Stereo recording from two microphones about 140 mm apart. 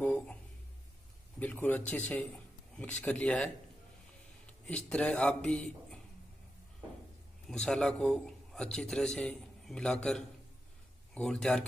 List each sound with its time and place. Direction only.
0.0 s a sound: 10° left (ahead or behind)
1.4 s speech: 10° left (ahead or behind)
4.5 s a man's voice: 10° left (ahead or behind)
7.4 s a man's voice: 5° left (ahead or behind)